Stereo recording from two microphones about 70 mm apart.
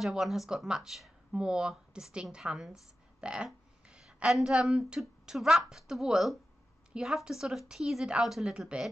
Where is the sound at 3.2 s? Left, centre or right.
Centre.